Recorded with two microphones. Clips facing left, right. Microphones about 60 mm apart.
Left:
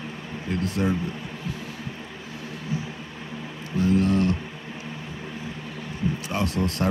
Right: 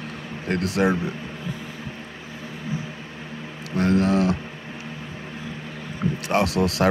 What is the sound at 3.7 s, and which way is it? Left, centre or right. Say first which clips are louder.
Speech: right 2 dB; right.